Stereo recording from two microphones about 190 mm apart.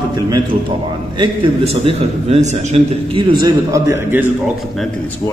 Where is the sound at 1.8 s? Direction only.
35° right (ahead or behind).